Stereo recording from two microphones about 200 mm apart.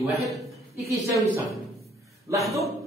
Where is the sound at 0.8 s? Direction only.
15° right (ahead or behind).